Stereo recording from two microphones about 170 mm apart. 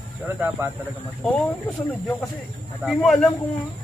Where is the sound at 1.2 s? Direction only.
5° left (ahead or behind).